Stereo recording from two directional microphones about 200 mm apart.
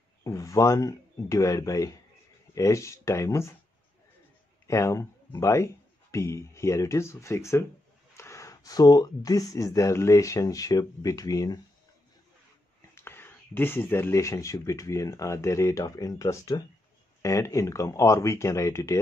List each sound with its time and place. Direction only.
0.2 s speech: 15° left (ahead or behind)
4.6 s speech: 15° left (ahead or behind)
12.9 s speech: 10° left (ahead or behind)